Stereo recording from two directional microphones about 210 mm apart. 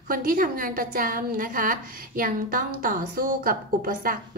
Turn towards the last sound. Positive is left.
turn(degrees=-45)  # may be behind; listen again after turning